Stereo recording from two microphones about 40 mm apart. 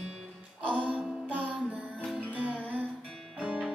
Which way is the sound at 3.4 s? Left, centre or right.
Right.